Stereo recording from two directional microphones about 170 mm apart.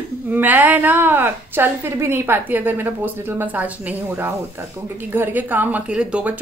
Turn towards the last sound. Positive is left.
turn(degrees=-5)  # may be behind; listen again after turning